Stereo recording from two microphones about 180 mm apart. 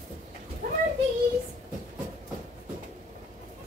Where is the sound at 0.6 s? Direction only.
50° right (ahead or behind).